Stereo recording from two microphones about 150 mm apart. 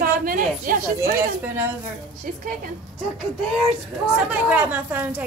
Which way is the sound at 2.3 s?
65° right (ahead or behind).